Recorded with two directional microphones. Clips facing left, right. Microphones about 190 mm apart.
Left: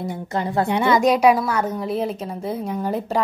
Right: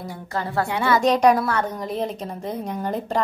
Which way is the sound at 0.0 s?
20° left (ahead or behind).